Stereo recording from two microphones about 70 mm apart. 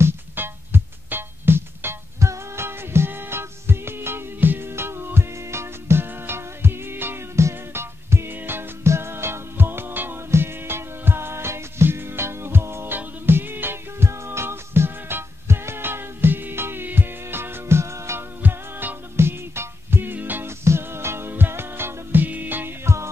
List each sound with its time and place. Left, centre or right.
0.0 s music: right
18.4 s music: right